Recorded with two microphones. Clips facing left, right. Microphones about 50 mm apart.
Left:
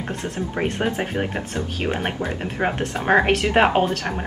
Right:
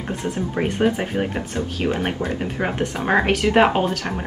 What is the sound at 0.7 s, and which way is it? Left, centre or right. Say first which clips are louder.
Speech: right 3 dB; centre.